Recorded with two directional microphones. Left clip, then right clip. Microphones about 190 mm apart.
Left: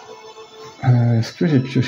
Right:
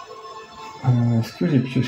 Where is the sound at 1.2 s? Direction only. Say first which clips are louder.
Left 3 dB; 45° left (ahead or behind).